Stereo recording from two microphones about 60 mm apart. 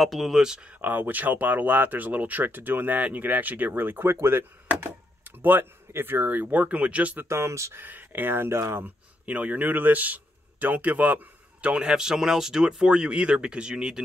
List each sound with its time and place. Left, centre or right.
0.0 s speech: centre
0.7 s speech: right
7.2 s speech: right
7.7 s speech: right
9.2 s speech: right
11.7 s speech: centre